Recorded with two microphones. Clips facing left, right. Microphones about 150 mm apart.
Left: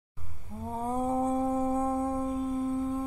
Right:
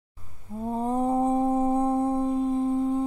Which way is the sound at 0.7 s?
25° right (ahead or behind).